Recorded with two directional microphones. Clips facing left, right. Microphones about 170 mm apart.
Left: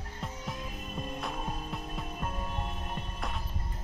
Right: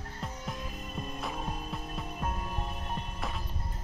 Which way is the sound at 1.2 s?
Centre (ahead or behind).